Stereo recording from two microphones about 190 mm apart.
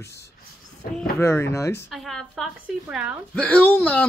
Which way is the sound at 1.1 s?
15° left (ahead or behind).